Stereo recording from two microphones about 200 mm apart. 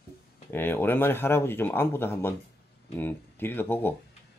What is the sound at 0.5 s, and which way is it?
Speech, 10° left (ahead or behind).